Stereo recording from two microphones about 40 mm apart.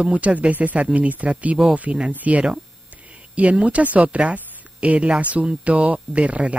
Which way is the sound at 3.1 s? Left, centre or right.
Right.